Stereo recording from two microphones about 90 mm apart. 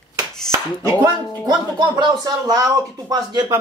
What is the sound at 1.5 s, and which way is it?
Speech, 55° right (ahead or behind).